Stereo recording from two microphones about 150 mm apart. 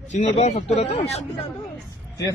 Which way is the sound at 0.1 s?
45° left (ahead or behind).